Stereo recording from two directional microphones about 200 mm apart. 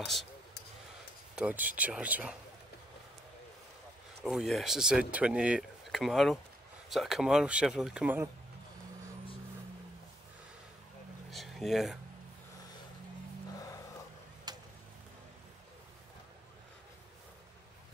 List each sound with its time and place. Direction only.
0.0 s speech: centre (ahead or behind)
1.3 s speech: 5° right (ahead or behind)
4.2 s speech: centre (ahead or behind)
11.2 s a sound: centre (ahead or behind)
13.5 s music: 15° left (ahead or behind)
14.5 s a sound: 20° right (ahead or behind)